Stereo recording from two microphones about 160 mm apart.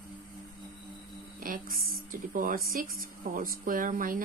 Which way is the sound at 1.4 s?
60° right (ahead or behind).